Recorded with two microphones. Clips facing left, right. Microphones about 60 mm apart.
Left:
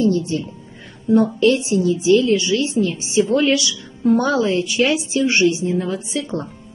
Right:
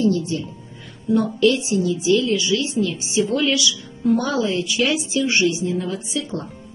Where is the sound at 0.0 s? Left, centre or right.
Left.